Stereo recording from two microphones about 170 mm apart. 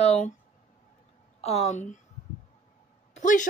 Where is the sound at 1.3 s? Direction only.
40° left (ahead or behind).